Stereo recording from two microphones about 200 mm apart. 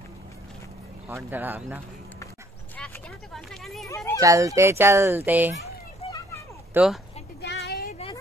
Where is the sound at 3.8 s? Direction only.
15° left (ahead or behind).